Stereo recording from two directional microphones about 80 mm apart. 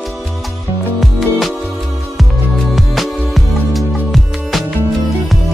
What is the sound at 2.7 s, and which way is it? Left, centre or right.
Music, centre.